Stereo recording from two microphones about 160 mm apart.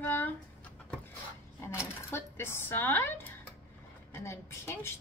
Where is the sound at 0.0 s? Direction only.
10° left (ahead or behind).